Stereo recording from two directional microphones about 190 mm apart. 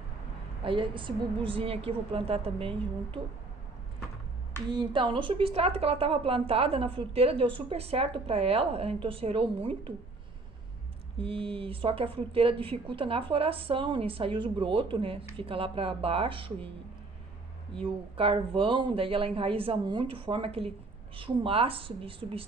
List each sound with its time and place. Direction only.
0.7 s a woman's voice: 25° right (ahead or behind)
4.7 s a woman's voice: 25° right (ahead or behind)
11.1 s a woman's voice: 30° right (ahead or behind)
17.7 s a woman's voice: 30° right (ahead or behind)